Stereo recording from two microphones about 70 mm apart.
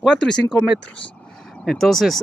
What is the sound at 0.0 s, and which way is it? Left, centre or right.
Speech, centre.